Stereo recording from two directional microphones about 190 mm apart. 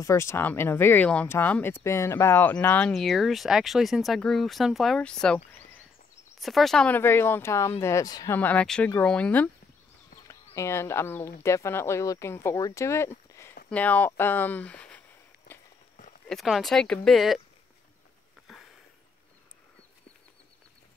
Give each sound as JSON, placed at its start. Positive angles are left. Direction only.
{"t": 0.0, "sound": "speech", "side_deg": 15}
{"t": 8.4, "sound": "speech", "side_deg": 10}
{"t": 16.3, "sound": "speech", "side_deg": 0}